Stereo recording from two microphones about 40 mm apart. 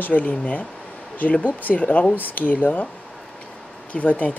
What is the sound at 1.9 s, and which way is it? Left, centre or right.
Speech, left.